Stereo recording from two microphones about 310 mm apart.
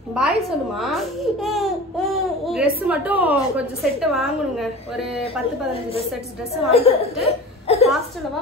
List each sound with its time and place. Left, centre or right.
0.1 s speech: centre
6.5 s a woman's voice: centre